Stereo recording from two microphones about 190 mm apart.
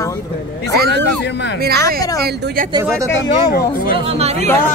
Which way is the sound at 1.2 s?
65° left (ahead or behind).